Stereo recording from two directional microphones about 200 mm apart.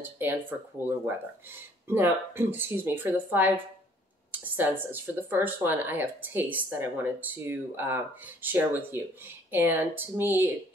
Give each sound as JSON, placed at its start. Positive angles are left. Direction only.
{"t": 0.2, "sound": "speech", "side_deg": -10}